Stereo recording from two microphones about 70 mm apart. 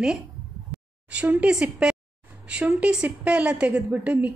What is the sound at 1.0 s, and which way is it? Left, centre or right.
A woman's voice, centre.